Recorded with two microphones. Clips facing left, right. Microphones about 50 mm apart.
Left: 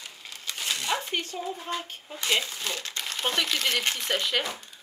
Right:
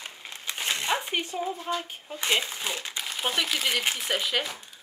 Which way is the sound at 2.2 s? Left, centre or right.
Centre.